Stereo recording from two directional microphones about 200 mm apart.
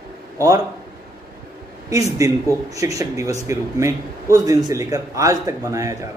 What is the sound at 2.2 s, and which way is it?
Speech, 15° right (ahead or behind).